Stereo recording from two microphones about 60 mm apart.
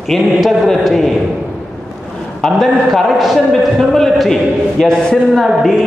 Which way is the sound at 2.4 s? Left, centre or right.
Centre.